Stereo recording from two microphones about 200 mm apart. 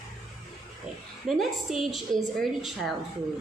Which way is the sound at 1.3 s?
Centre (ahead or behind).